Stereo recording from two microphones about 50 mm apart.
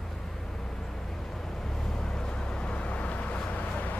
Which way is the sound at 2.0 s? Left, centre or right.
Centre.